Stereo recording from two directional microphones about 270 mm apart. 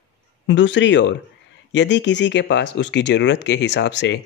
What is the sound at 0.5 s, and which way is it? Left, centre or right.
Speech, left.